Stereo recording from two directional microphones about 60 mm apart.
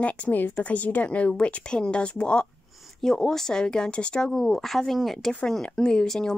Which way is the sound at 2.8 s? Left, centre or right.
Centre.